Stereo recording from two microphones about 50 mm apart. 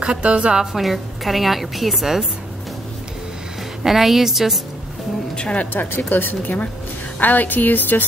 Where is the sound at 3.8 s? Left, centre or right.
Centre.